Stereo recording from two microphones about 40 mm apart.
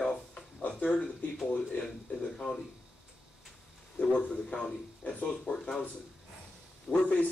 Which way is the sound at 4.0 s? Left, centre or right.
Left.